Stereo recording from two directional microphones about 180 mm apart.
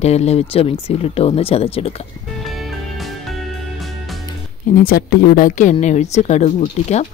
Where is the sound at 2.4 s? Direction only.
Centre (ahead or behind).